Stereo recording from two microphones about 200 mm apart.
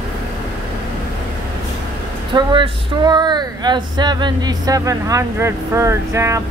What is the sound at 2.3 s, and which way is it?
Speech, 20° right (ahead or behind).